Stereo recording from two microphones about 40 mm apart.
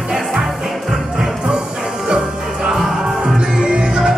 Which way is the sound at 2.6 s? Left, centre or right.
Centre.